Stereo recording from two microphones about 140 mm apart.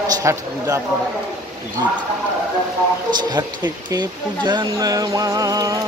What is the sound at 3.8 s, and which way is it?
Speech, 30° right (ahead or behind).